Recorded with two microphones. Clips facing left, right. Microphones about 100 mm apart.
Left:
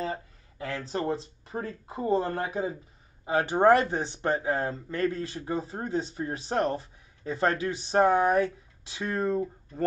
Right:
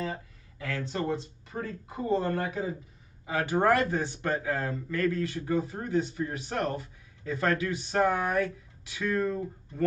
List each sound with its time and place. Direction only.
0.0 s speech: 30° left (ahead or behind)